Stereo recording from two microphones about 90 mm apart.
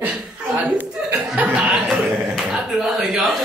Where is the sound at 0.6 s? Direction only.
15° right (ahead or behind).